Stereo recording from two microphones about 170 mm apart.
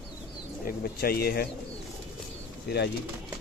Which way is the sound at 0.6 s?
65° left (ahead or behind).